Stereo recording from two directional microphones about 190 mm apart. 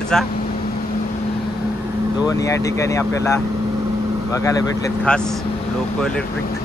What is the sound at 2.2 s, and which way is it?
Speech, 15° left (ahead or behind).